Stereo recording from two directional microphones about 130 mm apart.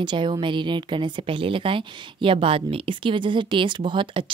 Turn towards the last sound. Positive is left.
turn(degrees=-40)  # may be behind; listen again after turning